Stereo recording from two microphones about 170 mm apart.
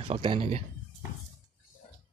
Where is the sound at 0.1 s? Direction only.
30° right (ahead or behind).